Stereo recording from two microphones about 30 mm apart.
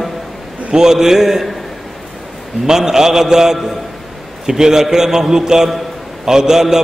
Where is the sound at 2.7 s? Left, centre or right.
Centre.